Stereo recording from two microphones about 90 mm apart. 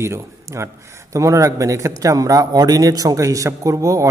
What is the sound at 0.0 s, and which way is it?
Speech, 30° right (ahead or behind).